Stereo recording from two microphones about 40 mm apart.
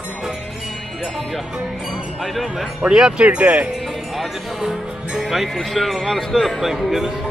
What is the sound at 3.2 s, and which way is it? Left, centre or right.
Speech, right.